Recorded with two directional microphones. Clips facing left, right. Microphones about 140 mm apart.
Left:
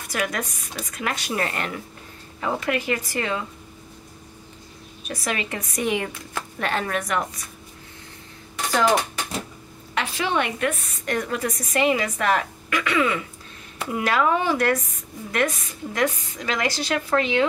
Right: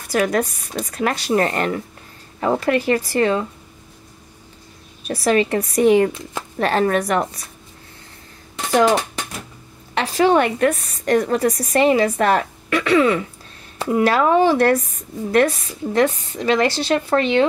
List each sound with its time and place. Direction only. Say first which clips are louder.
0.1 s a woman's voice: right 9 dB; 35° right (ahead or behind)
5.0 s a woman's voice: right 11 dB; 35° right (ahead or behind)
8.5 s music: right 4 dB; 25° right (ahead or behind)
9.9 s a woman's voice: right 9 dB; 40° right (ahead or behind)